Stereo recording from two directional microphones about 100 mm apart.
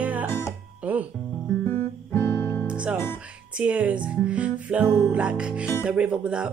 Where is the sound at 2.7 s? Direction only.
10° right (ahead or behind).